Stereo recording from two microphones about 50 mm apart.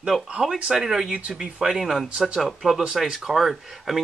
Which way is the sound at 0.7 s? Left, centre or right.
Centre.